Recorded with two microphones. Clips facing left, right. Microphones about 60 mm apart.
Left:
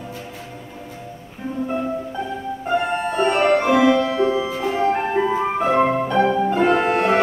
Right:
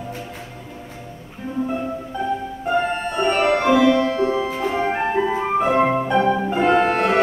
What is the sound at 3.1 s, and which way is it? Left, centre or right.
Music, centre.